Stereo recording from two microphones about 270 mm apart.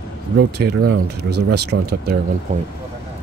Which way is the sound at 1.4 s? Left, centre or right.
Right.